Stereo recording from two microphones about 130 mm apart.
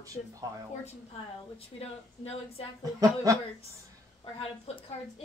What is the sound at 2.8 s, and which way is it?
Speech, 25° right (ahead or behind).